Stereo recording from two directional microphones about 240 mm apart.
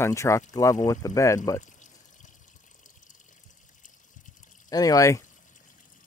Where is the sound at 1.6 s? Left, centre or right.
Left.